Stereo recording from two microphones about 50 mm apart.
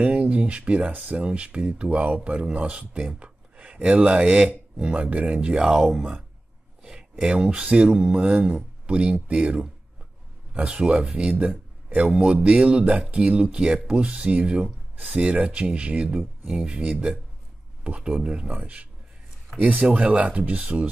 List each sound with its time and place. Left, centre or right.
0.0 s speech: right
16.4 s speech: centre